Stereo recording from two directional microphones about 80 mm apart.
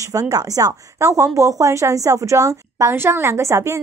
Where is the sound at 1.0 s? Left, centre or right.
Right.